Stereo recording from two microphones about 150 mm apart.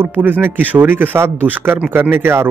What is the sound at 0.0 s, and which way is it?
Speech, 10° right (ahead or behind).